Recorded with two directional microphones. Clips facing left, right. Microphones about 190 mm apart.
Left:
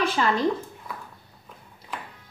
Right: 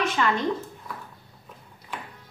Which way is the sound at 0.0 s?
35° left (ahead or behind).